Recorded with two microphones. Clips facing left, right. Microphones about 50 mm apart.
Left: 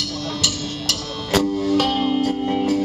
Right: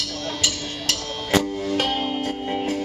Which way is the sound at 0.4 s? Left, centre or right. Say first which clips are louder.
Left 2 dB; right.